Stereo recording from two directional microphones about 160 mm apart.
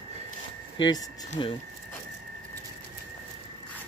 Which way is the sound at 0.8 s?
25° left (ahead or behind).